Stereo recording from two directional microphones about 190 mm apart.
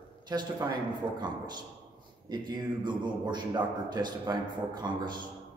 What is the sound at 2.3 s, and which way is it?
A man's voice, 25° right (ahead or behind).